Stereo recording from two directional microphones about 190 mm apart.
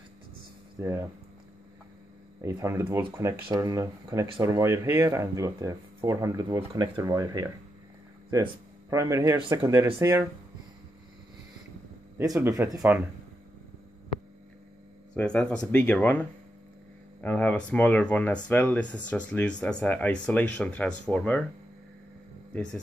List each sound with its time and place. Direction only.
0.7 s speech: 15° right (ahead or behind)
2.4 s speech: 15° right (ahead or behind)
8.9 s speech: 15° right (ahead or behind)
12.2 s speech: 15° right (ahead or behind)
15.1 s speech: 5° left (ahead or behind)
22.5 s speech: 5° left (ahead or behind)